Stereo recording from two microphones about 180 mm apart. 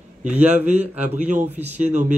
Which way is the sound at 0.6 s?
40° right (ahead or behind).